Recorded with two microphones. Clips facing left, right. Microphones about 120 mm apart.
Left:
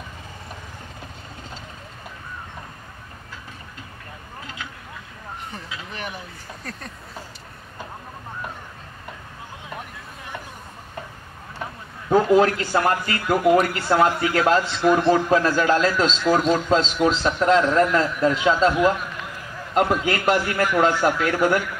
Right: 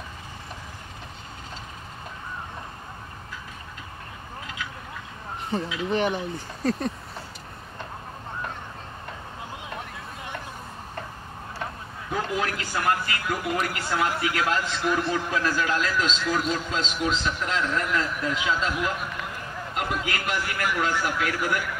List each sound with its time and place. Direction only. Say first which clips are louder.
5.5 s speech: right 10 dB; 30° right (ahead or behind)
12.1 s a man's voice: left 12 dB; 35° left (ahead or behind)
13.3 s speech: left 11 dB; 55° left (ahead or behind)
13.7 s a man's voice: left 7 dB; 35° left (ahead or behind)